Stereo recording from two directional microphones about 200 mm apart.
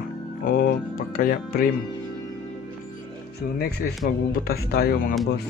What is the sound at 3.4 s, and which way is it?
Speech, 50° left (ahead or behind).